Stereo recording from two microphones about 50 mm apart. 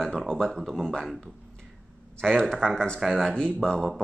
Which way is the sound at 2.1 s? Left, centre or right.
Centre.